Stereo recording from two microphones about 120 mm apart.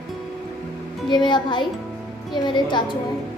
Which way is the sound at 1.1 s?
40° left (ahead or behind).